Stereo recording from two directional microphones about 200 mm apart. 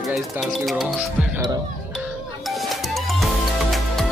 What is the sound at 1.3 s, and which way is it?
Speech, 20° right (ahead or behind).